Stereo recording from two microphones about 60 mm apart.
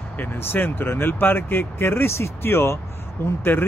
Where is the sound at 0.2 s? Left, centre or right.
Left.